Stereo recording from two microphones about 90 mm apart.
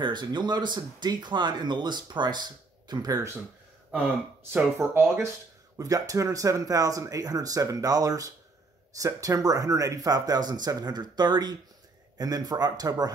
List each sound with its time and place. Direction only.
0.0 s speech: 60° right (ahead or behind)
3.9 s speech: 25° right (ahead or behind)
5.8 s speech: 40° right (ahead or behind)